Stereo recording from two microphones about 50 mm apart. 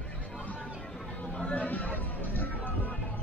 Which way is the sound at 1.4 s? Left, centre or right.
Left.